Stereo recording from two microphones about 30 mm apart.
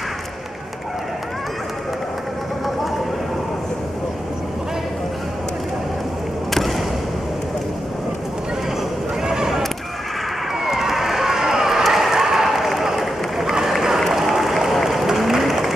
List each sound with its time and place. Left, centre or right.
9.2 s a sound: right
10.6 s run: centre
13.9 s applause: centre